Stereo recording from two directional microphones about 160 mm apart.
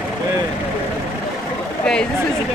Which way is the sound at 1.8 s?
5° left (ahead or behind).